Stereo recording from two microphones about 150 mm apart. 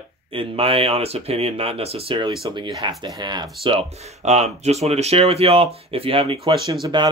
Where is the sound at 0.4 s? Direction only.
40° right (ahead or behind).